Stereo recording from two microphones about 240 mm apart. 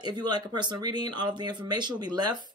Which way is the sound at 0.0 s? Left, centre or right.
Centre.